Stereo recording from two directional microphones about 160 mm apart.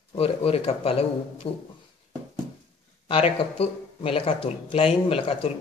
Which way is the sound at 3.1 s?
35° left (ahead or behind).